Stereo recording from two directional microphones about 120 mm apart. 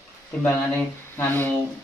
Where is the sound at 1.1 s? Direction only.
20° left (ahead or behind).